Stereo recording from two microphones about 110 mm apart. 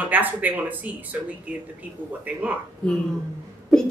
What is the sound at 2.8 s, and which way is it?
Speech, 10° left (ahead or behind).